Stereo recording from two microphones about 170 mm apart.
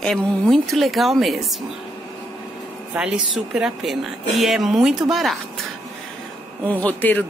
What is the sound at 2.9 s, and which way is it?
Speech, 5° right (ahead or behind).